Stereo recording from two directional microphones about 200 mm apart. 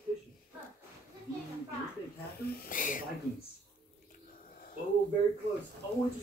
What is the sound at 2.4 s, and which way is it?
Speech, 45° left (ahead or behind).